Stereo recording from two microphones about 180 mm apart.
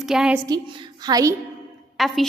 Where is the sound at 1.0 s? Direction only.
20° right (ahead or behind).